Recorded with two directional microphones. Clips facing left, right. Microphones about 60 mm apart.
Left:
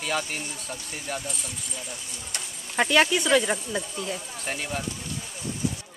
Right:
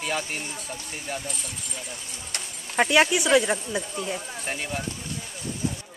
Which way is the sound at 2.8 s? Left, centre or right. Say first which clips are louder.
Right 1 dB; centre.